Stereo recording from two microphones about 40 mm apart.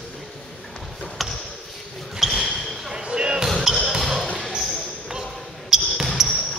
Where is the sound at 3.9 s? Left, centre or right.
Centre.